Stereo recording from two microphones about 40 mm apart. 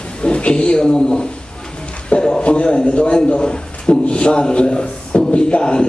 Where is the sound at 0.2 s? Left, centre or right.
Left.